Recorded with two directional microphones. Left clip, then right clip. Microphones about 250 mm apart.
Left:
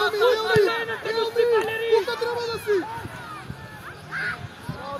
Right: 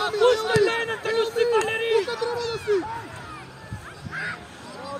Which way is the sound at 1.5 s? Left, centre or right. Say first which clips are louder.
Even; right.